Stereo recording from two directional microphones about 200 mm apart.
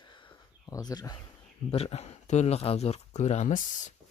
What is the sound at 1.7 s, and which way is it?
Speech, 30° left (ahead or behind).